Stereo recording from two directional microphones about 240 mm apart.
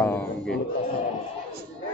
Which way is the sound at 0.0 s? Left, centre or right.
Centre.